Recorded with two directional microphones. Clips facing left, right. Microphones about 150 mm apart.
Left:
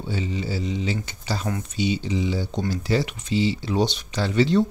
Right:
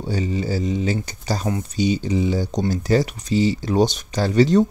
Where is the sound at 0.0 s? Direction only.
45° right (ahead or behind).